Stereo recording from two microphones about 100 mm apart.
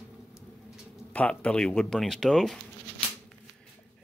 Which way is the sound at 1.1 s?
10° left (ahead or behind).